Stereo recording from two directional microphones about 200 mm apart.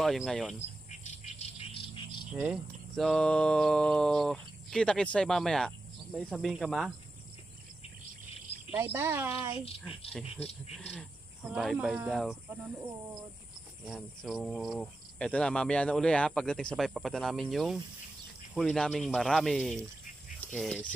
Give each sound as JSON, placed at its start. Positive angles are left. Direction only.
{"t": 0.0, "sound": "cricket", "side_deg": 0}
{"t": 0.6, "sound": "insect", "side_deg": 35}
{"t": 2.3, "sound": "cricket", "side_deg": -5}
{"t": 8.7, "sound": "speech", "side_deg": -10}
{"t": 10.2, "sound": "speech", "side_deg": 30}
{"t": 11.4, "sound": "cricket", "side_deg": 0}
{"t": 13.8, "sound": "cricket", "side_deg": 0}